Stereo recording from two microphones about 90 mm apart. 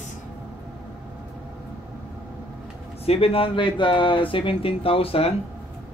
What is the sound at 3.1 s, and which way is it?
Speech, 90° left.